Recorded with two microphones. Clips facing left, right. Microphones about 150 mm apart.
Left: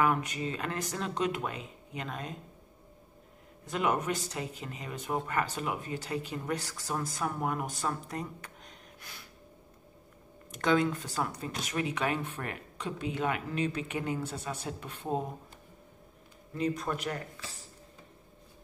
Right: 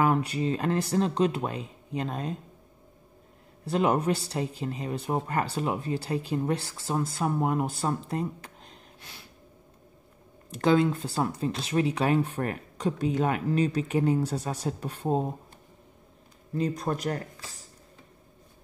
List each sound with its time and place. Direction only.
0.0 s speech: 30° right (ahead or behind)
3.6 s speech: 30° right (ahead or behind)
10.5 s speech: 30° right (ahead or behind)
16.5 s speech: 35° right (ahead or behind)